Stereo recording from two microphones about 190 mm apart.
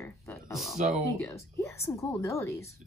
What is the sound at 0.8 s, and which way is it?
Speech, 40° right (ahead or behind).